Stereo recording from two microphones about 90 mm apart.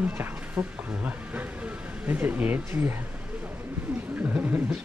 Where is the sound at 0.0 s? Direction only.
20° right (ahead or behind).